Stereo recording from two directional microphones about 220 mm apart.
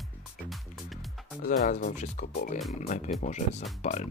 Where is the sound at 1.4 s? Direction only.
35° left (ahead or behind).